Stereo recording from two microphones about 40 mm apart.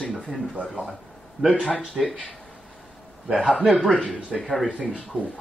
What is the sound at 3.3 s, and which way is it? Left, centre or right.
Speech, left.